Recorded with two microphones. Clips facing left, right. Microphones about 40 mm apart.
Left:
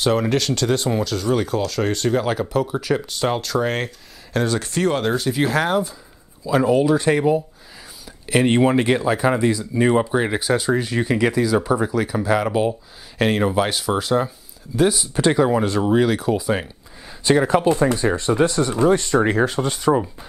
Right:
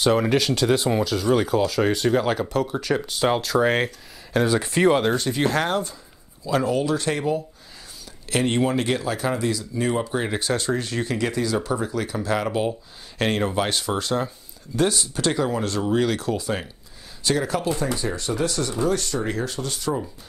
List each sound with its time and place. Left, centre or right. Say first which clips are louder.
0.0 s speech: even; centre
8.5 s speech: left 5 dB; left
10.1 s speech: left 5 dB; centre
15.1 s speech: left 9 dB; centre
17.2 s speech: left 7 dB; left